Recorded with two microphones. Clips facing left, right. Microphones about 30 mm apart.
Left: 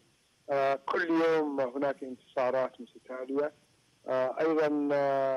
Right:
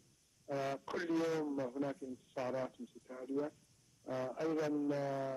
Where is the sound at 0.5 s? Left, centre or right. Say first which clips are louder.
Left 11 dB; left.